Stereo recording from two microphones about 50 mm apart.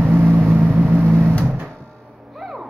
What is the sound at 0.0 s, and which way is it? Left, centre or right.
Vehicle, right.